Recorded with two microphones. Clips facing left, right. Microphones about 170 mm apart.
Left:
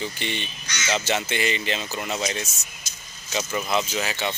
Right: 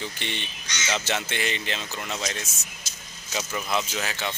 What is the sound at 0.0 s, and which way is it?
Speech, 5° left (ahead or behind).